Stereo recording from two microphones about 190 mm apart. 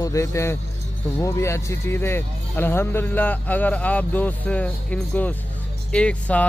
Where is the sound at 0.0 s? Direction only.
15° left (ahead or behind).